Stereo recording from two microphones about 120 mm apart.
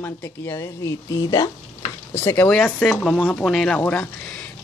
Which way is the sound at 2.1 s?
20° left (ahead or behind).